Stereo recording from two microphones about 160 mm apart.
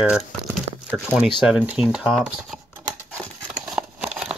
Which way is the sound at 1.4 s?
5° right (ahead or behind).